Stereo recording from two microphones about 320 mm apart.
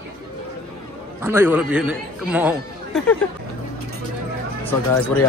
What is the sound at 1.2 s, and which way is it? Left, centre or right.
Speech, centre.